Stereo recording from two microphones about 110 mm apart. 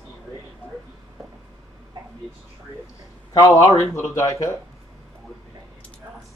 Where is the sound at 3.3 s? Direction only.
30° left (ahead or behind).